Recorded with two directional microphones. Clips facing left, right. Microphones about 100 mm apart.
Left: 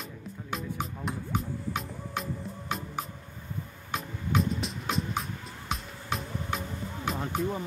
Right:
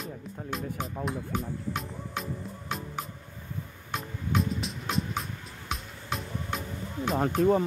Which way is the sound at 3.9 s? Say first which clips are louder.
Even; centre (ahead or behind).